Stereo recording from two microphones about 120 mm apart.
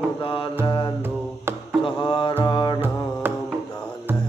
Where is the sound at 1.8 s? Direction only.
45° left (ahead or behind).